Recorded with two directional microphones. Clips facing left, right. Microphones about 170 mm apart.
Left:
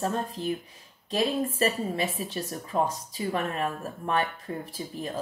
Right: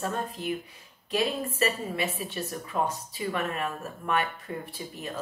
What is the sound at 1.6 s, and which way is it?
Speech, 35° left (ahead or behind).